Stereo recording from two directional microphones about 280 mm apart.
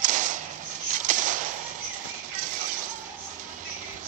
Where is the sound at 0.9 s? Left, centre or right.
Right.